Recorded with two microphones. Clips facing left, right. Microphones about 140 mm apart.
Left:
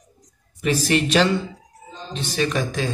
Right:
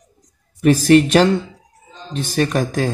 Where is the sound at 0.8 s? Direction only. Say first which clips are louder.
Right 6 dB; 50° right (ahead or behind).